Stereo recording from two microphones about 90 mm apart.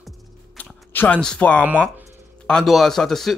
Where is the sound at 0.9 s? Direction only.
20° left (ahead or behind).